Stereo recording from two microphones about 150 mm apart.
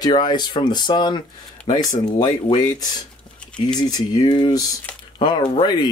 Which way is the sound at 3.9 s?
25° left (ahead or behind).